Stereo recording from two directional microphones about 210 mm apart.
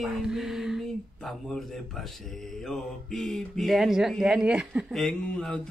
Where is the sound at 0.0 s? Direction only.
Centre (ahead or behind).